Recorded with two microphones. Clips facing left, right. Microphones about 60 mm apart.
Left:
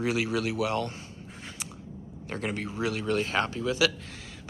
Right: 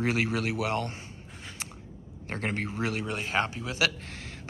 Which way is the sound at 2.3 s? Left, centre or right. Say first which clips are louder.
Right 1 dB; right.